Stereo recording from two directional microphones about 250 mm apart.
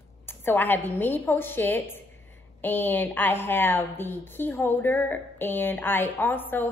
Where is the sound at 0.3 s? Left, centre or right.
Centre.